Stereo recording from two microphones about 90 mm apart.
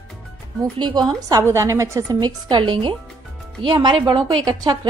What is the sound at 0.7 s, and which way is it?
Speech, 55° right (ahead or behind).